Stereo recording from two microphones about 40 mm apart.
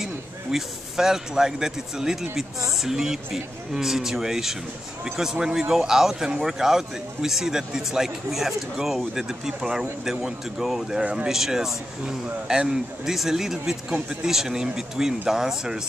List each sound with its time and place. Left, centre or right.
0.0 s speech: centre